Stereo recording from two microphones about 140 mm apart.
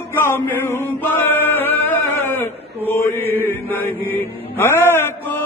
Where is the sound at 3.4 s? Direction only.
15° left (ahead or behind).